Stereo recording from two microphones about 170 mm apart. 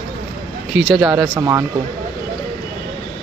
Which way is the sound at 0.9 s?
10° right (ahead or behind).